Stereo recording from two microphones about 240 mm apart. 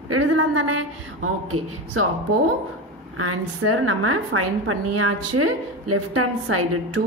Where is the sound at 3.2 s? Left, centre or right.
Right.